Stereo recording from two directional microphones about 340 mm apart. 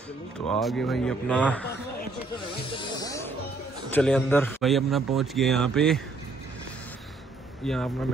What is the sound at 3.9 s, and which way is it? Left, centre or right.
Speech, centre.